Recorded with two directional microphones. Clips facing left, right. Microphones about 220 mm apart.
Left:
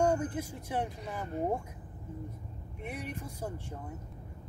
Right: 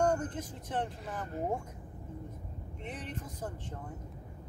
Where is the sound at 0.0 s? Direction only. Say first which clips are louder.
Left 1 dB; 10° left (ahead or behind).